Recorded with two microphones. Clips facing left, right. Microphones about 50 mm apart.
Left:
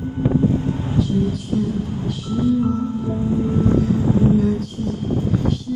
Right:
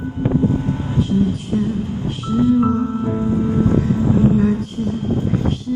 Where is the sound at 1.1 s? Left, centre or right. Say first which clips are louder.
Right 2 dB; right.